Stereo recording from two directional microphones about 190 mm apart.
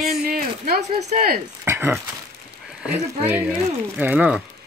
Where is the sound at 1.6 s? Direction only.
10° right (ahead or behind).